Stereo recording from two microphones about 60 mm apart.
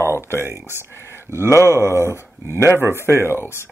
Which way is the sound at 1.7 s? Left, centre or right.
Right.